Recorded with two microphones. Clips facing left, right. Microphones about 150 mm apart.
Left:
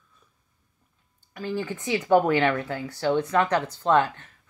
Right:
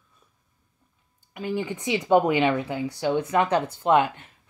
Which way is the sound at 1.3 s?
15° right (ahead or behind).